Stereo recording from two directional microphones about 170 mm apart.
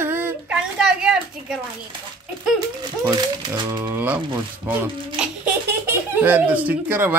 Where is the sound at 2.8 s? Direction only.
20° right (ahead or behind).